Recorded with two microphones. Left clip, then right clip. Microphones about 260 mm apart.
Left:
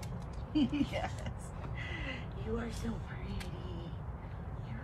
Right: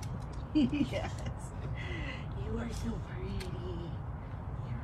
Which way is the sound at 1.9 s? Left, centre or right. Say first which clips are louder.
Even; centre.